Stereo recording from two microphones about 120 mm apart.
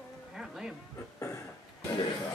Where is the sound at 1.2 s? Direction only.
25° left (ahead or behind).